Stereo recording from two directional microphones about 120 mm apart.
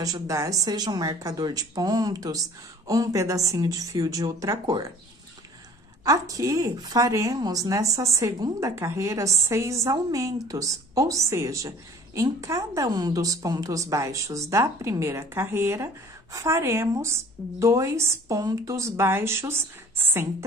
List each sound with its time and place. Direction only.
0.0 s speech: 30° right (ahead or behind)
6.0 s a woman's voice: 30° right (ahead or behind)